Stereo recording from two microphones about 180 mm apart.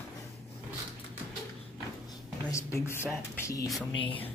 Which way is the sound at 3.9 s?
30° left (ahead or behind).